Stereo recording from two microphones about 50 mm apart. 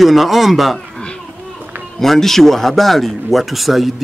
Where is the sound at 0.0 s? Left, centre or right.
Centre.